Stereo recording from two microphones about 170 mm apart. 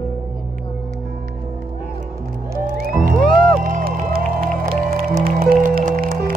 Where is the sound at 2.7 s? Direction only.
60° right (ahead or behind).